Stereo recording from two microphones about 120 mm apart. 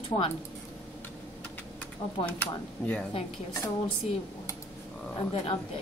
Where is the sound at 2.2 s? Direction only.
50° left (ahead or behind).